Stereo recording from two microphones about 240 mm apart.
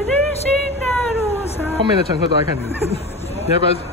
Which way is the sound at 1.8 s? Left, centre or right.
Centre.